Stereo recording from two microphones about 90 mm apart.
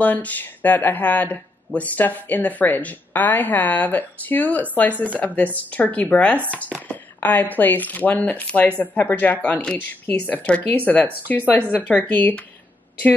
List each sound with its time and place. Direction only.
0.0 s speech: 20° left (ahead or behind)
6.3 s speech: 20° right (ahead or behind)
6.9 s a woman's voice: 20° left (ahead or behind)